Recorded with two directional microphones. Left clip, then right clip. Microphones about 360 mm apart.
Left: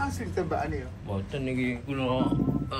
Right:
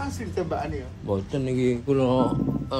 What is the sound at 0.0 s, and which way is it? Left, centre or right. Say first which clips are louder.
Speech: right 1 dB; centre.